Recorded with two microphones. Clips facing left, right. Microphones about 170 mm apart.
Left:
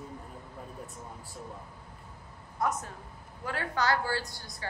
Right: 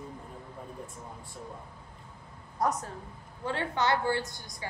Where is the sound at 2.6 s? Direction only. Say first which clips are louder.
Right 2 dB; 35° right (ahead or behind).